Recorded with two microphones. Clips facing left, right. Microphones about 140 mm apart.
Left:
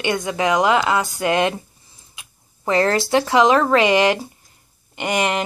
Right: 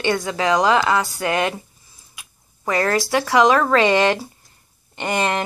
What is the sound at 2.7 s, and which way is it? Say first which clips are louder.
Speech: left 2 dB; 25° left (ahead or behind).